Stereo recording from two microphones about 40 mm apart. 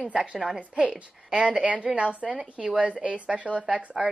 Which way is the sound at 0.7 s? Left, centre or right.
Right.